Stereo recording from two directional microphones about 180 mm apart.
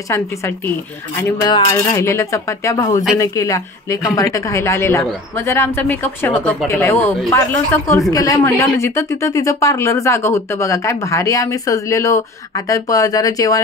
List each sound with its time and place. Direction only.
1.2 s speech: 20° left (ahead or behind)